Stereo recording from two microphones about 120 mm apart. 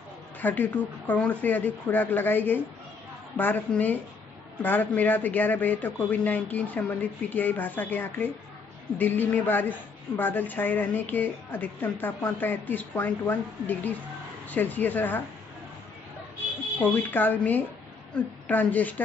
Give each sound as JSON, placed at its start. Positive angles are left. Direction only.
{"t": 0.4, "sound": "a woman's voice", "side_deg": 15}
{"t": 16.8, "sound": "a woman's voice", "side_deg": 15}